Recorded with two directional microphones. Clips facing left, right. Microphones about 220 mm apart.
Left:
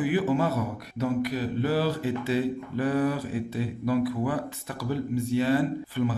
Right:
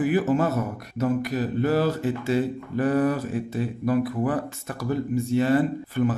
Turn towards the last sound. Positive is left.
turn(degrees=-50)  # may be behind; listen again after turning